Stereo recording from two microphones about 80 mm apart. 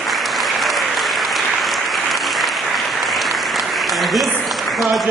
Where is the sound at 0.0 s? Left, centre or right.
Centre.